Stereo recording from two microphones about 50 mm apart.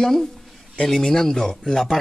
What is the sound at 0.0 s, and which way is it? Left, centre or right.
Speech, centre.